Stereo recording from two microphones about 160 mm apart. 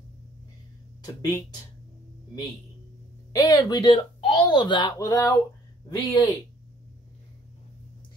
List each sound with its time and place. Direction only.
1.0 s speech: 25° left (ahead or behind)
3.3 s speech: 25° left (ahead or behind)